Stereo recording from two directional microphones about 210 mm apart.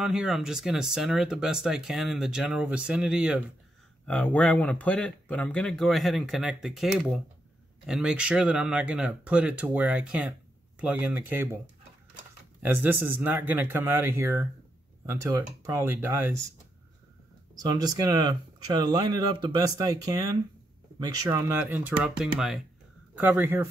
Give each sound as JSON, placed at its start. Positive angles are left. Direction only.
{"t": 0.0, "sound": "speech", "side_deg": -5}
{"t": 12.6, "sound": "speech", "side_deg": -10}
{"t": 17.6, "sound": "speech", "side_deg": -20}